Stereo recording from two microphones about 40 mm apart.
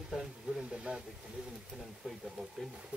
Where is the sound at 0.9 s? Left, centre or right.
Right.